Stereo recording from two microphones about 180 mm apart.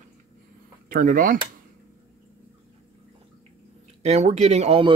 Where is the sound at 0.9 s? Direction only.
50° right (ahead or behind).